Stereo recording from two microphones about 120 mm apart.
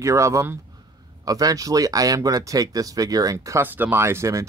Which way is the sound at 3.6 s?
15° right (ahead or behind).